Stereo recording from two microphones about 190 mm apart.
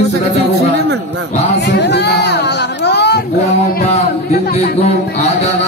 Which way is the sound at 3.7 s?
35° left (ahead or behind).